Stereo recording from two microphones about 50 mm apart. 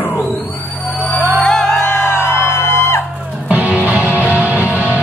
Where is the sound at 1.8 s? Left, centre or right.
Left.